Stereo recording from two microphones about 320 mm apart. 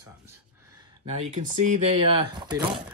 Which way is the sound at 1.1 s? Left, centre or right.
Centre.